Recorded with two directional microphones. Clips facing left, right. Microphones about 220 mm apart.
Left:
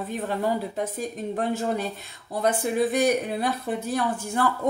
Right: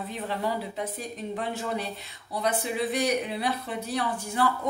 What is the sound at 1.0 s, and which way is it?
Speech, 45° left (ahead or behind).